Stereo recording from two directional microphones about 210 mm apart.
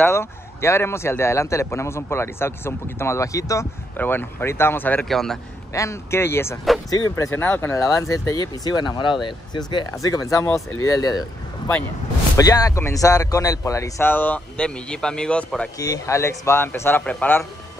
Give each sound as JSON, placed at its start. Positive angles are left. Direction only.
{"t": 0.0, "sound": "speech", "side_deg": 10}
{"t": 5.7, "sound": "speech", "side_deg": 15}